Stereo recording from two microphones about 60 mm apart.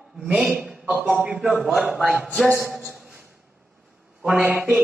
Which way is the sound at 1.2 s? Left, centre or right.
Centre.